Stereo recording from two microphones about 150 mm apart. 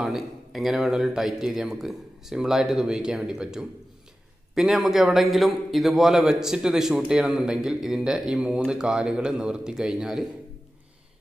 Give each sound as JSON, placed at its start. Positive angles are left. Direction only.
{"t": 0.0, "sound": "a man's voice", "side_deg": 0}